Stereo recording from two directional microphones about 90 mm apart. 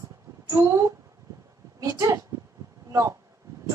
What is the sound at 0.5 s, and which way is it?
Speech, 35° right (ahead or behind).